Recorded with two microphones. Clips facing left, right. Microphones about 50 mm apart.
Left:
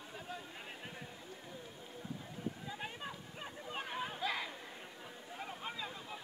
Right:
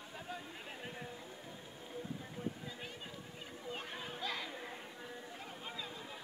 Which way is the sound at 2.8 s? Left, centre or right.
Left.